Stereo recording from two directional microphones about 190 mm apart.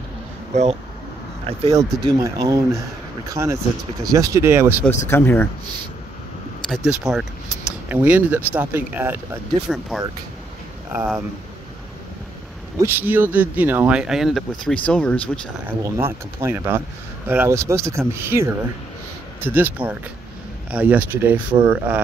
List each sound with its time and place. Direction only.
1.7 s speech: 20° right (ahead or behind)
5.0 s speech: 10° left (ahead or behind)
6.7 s speech: centre (ahead or behind)
12.7 s speech: 10° right (ahead or behind); by 15.4 s 5° left (ahead or behind)
15.6 s speech: 10° right (ahead or behind)